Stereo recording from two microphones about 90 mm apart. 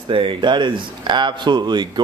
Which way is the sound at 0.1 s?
70° right (ahead or behind).